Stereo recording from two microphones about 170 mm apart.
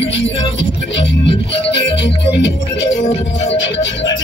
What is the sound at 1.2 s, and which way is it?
Music, 30° left (ahead or behind).